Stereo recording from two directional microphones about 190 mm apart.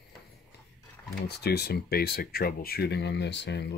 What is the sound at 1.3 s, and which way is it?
Speech, 60° left (ahead or behind).